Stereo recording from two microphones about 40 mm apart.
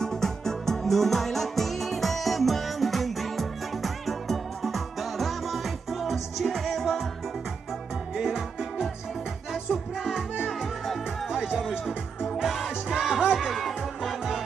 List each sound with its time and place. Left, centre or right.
0.0 s music: centre
8.2 s music: centre
9.5 s music: centre
10.3 s music: centre
12.4 s music: centre
13.5 s music: centre